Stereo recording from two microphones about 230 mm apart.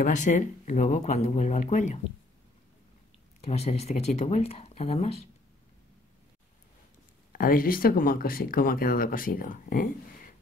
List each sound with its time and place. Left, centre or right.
0.0 s speech: left
3.3 s speech: left
7.3 s speech: left